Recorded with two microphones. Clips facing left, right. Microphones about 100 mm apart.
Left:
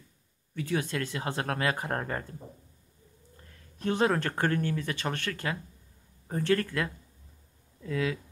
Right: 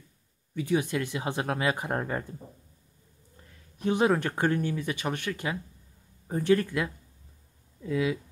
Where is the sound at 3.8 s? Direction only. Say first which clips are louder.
Right 2 dB; 15° right (ahead or behind).